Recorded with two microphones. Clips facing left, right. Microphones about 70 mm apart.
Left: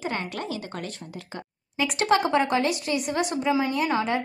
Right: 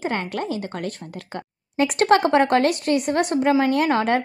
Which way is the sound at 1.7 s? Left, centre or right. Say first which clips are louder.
Right 5 dB; right.